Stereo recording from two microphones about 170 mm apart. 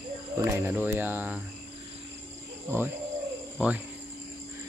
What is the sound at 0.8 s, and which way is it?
Speech, 10° right (ahead or behind).